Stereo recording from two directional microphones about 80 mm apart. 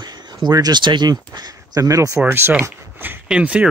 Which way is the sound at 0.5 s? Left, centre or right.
Right.